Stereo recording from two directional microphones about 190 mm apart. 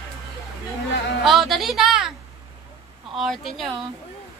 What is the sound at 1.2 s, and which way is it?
Speech, centre (ahead or behind).